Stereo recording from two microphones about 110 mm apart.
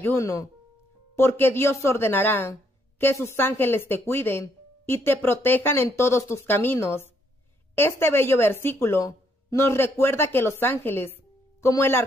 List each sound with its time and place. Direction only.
0.0 s speech: 25° left (ahead or behind)